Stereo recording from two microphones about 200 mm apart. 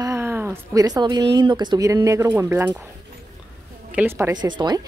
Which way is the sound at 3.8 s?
10° right (ahead or behind).